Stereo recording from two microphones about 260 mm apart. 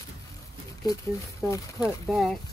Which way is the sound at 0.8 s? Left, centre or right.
Centre.